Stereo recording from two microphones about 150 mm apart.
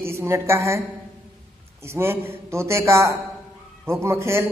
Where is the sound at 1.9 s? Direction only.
15° right (ahead or behind).